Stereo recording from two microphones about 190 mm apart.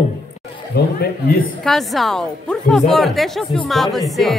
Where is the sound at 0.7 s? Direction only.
55° left (ahead or behind).